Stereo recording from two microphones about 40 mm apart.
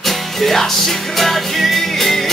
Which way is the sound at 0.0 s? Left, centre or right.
Centre.